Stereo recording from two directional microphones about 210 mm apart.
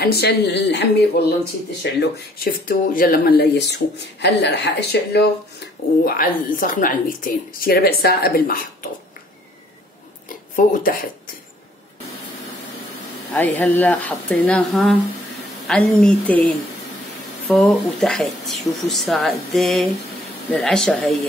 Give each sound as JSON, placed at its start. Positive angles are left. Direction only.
{"t": 0.0, "sound": "speech", "side_deg": 50}
{"t": 10.5, "sound": "speech", "side_deg": 40}
{"t": 13.3, "sound": "a woman's voice", "side_deg": 5}